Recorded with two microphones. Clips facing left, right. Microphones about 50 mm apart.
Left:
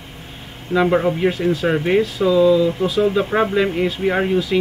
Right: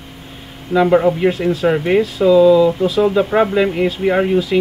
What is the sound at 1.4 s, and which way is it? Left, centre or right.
Speech, right.